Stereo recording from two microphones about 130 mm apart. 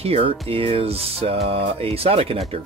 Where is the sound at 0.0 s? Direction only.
50° right (ahead or behind).